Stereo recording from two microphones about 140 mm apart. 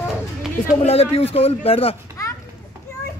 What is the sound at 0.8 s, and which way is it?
Speech, 45° left (ahead or behind).